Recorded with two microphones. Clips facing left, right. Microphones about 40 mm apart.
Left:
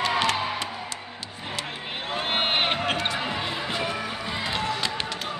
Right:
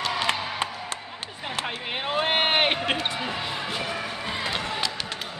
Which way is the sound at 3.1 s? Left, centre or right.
Centre.